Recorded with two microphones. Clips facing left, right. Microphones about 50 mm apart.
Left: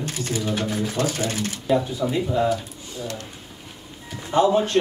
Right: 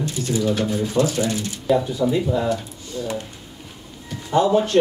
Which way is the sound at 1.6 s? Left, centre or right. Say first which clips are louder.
Right 3 dB; centre.